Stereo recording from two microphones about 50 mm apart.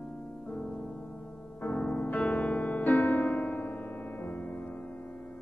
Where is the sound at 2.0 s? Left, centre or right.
Left.